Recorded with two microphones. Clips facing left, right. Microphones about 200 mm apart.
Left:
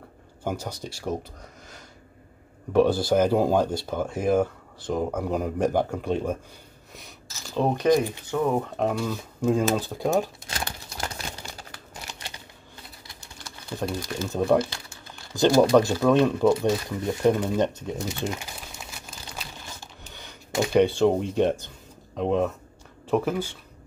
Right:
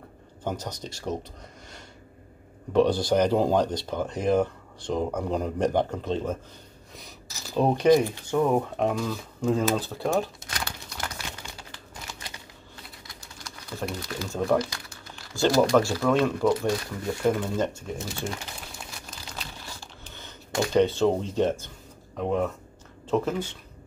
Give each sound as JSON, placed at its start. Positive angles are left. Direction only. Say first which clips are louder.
{"t": 0.4, "sound": "speech", "louder": "left 1 dB", "side_deg": 10}
{"t": 2.7, "sound": "speech", "louder": "left 1 dB", "side_deg": 5}
{"t": 7.5, "sound": "speech", "louder": "right 1 dB", "side_deg": -10}
{"t": 8.7, "sound": "speech", "louder": "even", "side_deg": 5}
{"t": 10.5, "sound": "crumpling", "louder": "left 2 dB", "side_deg": 25}
{"t": 13.0, "sound": "typing", "louder": "even", "side_deg": 25}
{"t": 14.1, "sound": "speech", "louder": "left 3 dB", "side_deg": 20}
{"t": 18.8, "sound": "crumpling", "louder": "even", "side_deg": 10}
{"t": 19.8, "sound": "a sound", "louder": "even", "side_deg": 15}
{"t": 22.1, "sound": "speech", "louder": "left 2 dB", "side_deg": 20}